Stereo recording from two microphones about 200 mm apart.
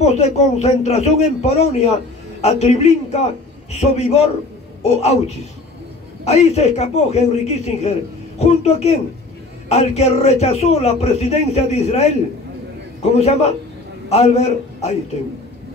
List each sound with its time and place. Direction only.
0.0 s a man's voice: 35° left (ahead or behind)
13.2 s a man's voice: 30° left (ahead or behind)